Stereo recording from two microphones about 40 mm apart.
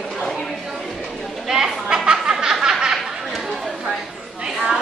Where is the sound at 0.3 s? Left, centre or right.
Centre.